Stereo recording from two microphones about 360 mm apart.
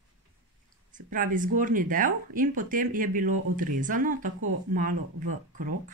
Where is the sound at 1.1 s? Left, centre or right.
Right.